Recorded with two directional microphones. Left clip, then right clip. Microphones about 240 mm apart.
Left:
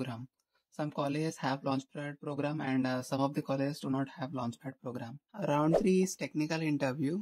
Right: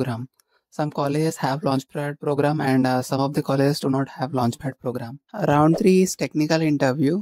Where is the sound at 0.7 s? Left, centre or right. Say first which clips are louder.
Right 11 dB; right.